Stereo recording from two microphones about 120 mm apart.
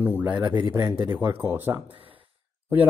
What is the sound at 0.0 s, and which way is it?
A man's voice, 15° right (ahead or behind).